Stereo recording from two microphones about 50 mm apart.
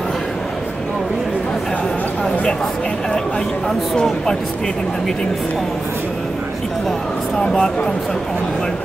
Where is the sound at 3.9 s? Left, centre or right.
Centre.